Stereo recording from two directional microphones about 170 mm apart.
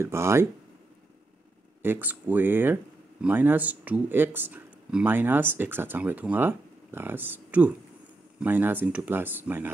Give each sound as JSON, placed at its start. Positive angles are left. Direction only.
{"t": 0.0, "sound": "speech", "side_deg": -15}
{"t": 1.8, "sound": "speech", "side_deg": -10}